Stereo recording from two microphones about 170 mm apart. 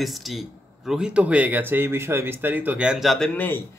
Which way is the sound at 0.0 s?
Centre (ahead or behind).